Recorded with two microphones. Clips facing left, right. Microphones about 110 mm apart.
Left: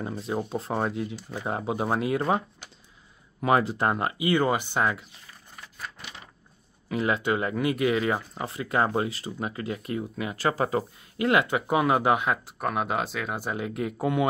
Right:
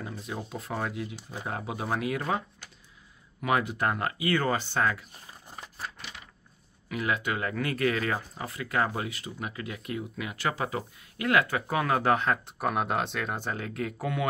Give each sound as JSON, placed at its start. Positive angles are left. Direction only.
{"t": 0.0, "sound": "speech", "side_deg": 35}
{"t": 6.9, "sound": "speech", "side_deg": 30}
{"t": 11.1, "sound": "speech", "side_deg": 25}
{"t": 12.5, "sound": "speech", "side_deg": 0}